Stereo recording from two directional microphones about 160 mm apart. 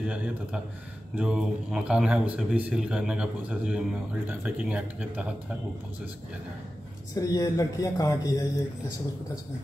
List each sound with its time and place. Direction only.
0.0 s speech: 5° right (ahead or behind)
7.2 s speech: 25° left (ahead or behind)